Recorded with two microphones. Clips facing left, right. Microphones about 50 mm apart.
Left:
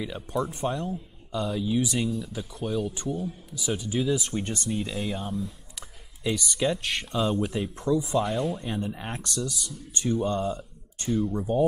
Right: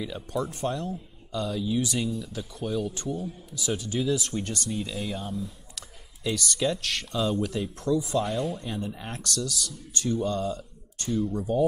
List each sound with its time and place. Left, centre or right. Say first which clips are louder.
0.0 s speech: left 1 dB; centre
5.8 s speech: even; centre